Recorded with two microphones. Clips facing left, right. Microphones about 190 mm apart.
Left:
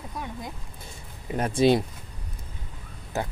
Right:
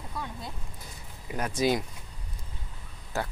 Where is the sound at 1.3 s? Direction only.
30° left (ahead or behind).